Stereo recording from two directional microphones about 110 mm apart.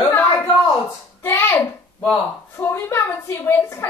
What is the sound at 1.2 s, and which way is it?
A woman's voice, 20° left (ahead or behind).